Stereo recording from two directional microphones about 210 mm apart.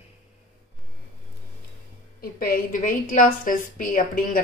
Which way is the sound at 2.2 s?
45° left (ahead or behind).